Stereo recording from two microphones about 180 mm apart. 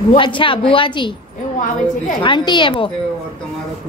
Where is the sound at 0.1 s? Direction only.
30° left (ahead or behind).